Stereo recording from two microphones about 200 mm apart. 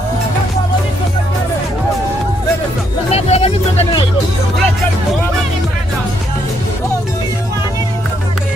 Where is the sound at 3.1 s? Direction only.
30° left (ahead or behind).